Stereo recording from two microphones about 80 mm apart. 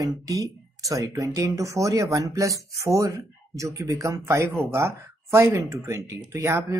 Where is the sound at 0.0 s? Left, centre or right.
Right.